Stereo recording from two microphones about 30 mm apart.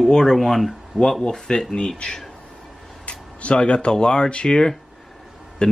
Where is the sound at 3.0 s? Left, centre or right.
Left.